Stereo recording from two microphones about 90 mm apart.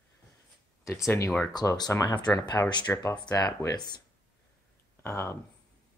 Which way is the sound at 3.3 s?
40° left (ahead or behind).